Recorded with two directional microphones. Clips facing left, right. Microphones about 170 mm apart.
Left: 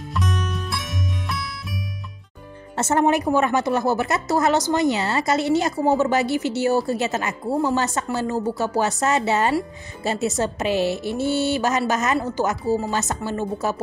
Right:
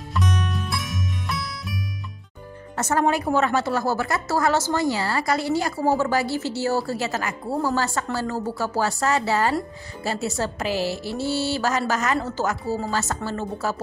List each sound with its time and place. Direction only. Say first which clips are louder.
0.1 s music: right 1 dB; centre (ahead or behind)
2.7 s a woman's voice: left 3 dB; 25° left (ahead or behind)